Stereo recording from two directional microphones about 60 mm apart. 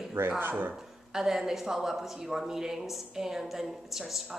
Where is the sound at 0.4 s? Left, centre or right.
Right.